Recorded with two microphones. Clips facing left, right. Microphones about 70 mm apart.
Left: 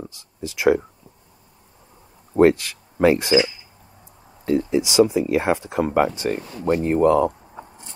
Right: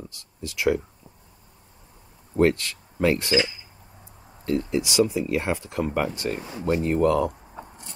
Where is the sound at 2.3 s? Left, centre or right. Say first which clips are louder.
Left 5 dB; centre.